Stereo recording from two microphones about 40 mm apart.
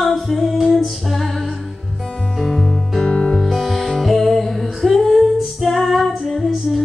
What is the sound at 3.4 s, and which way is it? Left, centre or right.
Music, centre.